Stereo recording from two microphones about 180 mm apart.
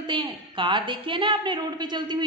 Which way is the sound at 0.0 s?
25° right (ahead or behind).